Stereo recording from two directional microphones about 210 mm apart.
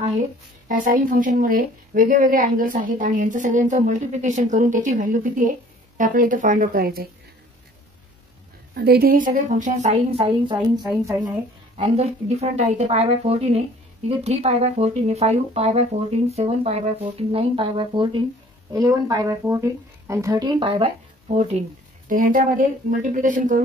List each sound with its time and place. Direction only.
0.7 s a woman's voice: 40° right (ahead or behind)
8.7 s a woman's voice: 45° right (ahead or behind); by 11.3 s 15° right (ahead or behind)
11.7 s a woman's voice: 30° right (ahead or behind)
22.1 s a woman's voice: 40° right (ahead or behind)